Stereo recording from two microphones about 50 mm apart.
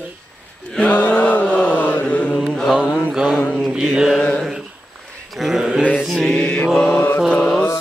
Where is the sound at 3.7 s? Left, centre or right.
Centre.